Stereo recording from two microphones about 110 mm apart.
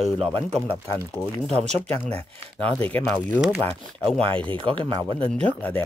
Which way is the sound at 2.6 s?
15° left (ahead or behind).